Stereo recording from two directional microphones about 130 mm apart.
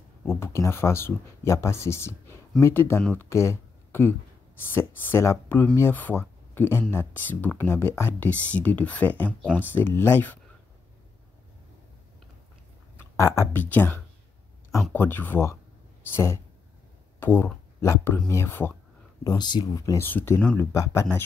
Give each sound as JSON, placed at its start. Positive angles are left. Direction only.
{"t": 0.2, "sound": "speech", "side_deg": 20}
{"t": 13.1, "sound": "speech", "side_deg": 20}
{"t": 17.2, "sound": "speech", "side_deg": 15}
{"t": 19.2, "sound": "speech", "side_deg": 35}
{"t": 20.0, "sound": "speech", "side_deg": 15}